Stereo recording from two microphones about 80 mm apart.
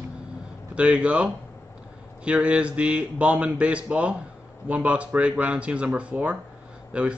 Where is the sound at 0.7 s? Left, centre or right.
Centre.